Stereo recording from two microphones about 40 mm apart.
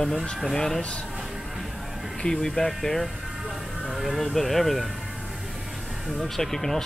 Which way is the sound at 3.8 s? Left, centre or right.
Centre.